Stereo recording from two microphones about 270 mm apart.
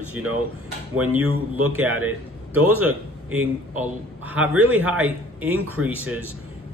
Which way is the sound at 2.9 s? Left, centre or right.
Right.